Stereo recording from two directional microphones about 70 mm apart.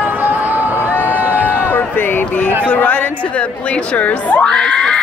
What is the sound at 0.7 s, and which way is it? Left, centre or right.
Crowd, left.